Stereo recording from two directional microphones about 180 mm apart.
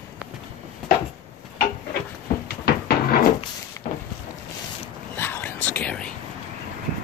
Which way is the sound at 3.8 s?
45° left (ahead or behind).